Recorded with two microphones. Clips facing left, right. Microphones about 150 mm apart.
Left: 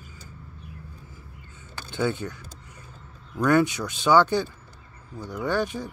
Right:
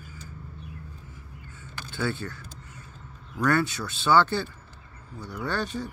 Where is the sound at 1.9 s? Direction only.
15° left (ahead or behind).